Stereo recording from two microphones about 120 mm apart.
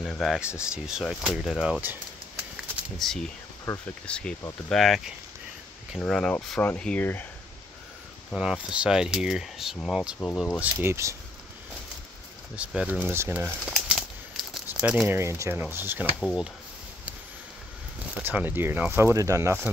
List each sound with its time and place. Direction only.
0.0 s speech: 5° left (ahead or behind)
3.0 s speech: 5° left (ahead or behind)
8.4 s speech: 5° right (ahead or behind)
10.6 s speech: 20° right (ahead or behind)
12.5 s speech: 10° right (ahead or behind)
14.5 s crumpling: 5° right (ahead or behind)
15.1 s speech: 25° right (ahead or behind)
18.1 s speech: 15° right (ahead or behind)